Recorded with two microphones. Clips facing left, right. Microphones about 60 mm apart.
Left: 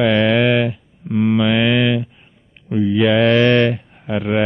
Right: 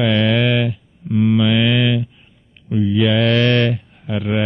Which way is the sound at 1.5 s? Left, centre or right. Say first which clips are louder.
Left 1 dB; centre.